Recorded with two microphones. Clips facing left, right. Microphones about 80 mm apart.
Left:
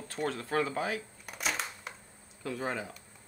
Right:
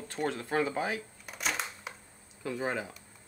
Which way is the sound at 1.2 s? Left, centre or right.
Centre.